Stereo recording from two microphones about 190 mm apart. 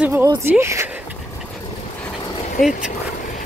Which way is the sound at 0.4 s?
15° right (ahead or behind).